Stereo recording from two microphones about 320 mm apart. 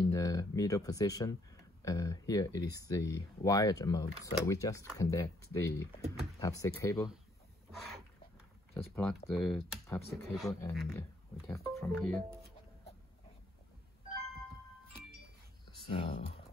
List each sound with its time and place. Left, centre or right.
0.0 s speech: centre
8.7 s speech: centre
15.9 s speech: centre